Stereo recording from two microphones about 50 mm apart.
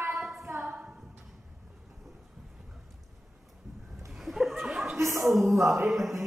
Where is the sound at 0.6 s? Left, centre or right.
Right.